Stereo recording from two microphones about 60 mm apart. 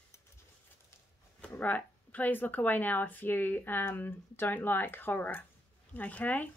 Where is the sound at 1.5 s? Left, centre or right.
Left.